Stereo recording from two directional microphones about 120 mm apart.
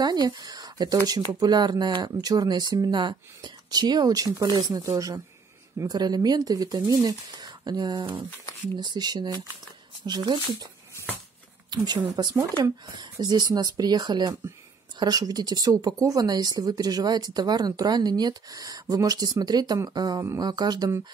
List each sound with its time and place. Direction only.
0.0 s speech: 35° right (ahead or behind)
11.7 s speech: 35° right (ahead or behind)